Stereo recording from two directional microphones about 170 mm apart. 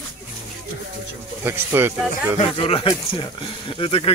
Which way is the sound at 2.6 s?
30° left (ahead or behind).